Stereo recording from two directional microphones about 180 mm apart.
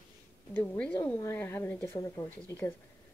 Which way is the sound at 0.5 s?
10° left (ahead or behind).